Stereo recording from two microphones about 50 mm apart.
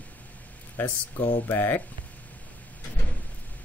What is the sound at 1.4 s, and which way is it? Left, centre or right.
Speech, left.